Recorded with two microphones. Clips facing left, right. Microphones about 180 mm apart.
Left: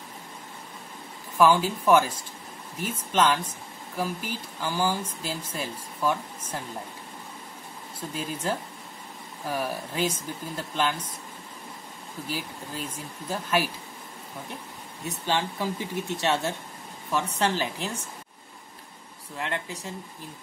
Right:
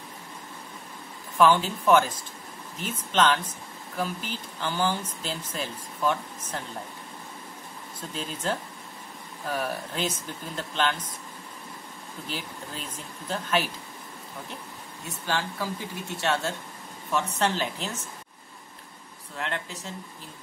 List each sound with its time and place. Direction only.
1.4 s speech: 10° left (ahead or behind)
8.1 s speech: 10° left (ahead or behind)
12.3 s speech: 10° left (ahead or behind)
15.0 s speech: 20° left (ahead or behind)
19.3 s speech: 10° left (ahead or behind)